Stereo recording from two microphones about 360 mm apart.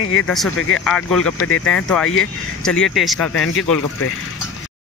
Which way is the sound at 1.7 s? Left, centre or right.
Centre.